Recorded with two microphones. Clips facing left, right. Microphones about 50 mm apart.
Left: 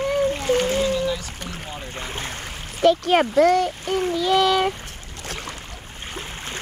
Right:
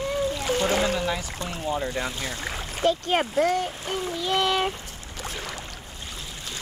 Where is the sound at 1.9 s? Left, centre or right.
Left.